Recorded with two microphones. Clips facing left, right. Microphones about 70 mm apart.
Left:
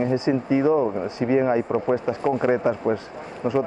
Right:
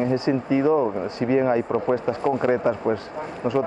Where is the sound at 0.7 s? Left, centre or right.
Centre.